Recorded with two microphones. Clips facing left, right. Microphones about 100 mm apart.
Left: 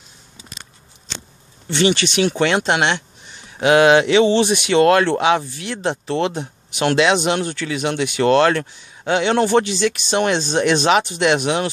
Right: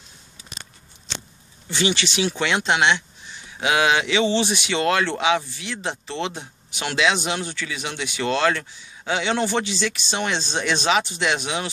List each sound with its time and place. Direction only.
1.7 s speech: 55° left (ahead or behind)